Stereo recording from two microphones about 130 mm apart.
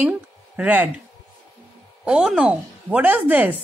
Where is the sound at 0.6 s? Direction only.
15° right (ahead or behind).